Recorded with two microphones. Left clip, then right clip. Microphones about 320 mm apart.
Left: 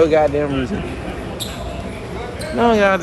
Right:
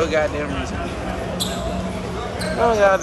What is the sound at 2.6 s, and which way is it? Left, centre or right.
Speech, left.